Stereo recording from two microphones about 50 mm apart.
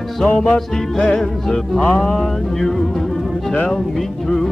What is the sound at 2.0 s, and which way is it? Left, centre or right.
Music, centre.